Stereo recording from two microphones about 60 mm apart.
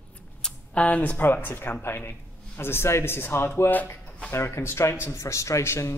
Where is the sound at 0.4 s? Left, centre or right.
Centre.